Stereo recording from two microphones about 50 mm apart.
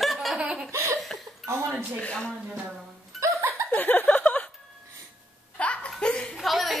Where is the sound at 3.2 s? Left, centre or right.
Right.